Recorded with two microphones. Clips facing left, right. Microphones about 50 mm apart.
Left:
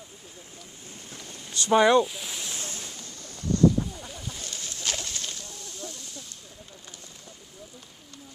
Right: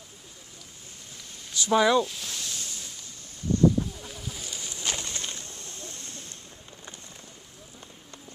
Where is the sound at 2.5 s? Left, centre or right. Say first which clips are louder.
Left 2 dB; left.